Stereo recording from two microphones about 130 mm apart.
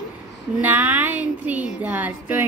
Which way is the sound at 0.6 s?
10° right (ahead or behind).